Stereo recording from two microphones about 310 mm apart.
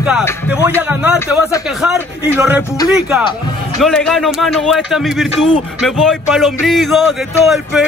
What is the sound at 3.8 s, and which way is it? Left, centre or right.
Speech, centre.